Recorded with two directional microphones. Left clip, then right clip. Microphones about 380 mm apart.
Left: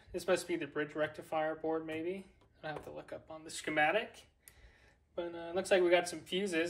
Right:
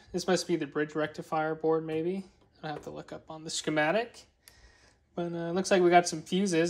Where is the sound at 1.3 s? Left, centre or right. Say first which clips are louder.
Right 9 dB; right.